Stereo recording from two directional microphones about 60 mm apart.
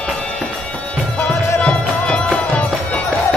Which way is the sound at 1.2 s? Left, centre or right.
Centre.